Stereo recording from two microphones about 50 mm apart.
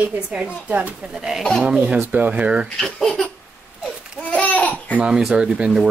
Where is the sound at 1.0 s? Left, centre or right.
Centre.